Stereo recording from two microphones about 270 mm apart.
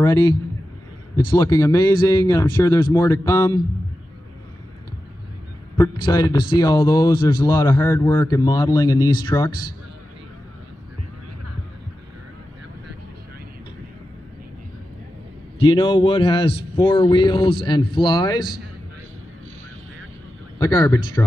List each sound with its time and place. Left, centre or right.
0.0 s a man's voice: centre
5.8 s a man's voice: centre
15.6 s a man's voice: centre
20.5 s speech: centre